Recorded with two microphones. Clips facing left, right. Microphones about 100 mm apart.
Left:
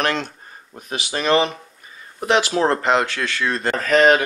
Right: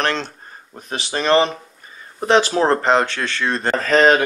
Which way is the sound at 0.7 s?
35° right (ahead or behind).